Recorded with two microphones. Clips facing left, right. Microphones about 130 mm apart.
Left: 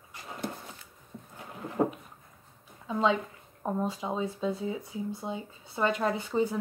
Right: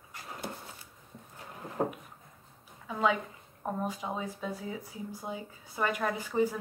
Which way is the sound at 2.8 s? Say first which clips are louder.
Left 2 dB; 25° left (ahead or behind).